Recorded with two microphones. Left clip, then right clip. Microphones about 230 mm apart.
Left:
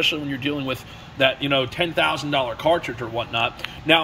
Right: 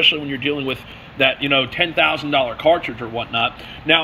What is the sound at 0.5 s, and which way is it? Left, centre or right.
Speech, centre.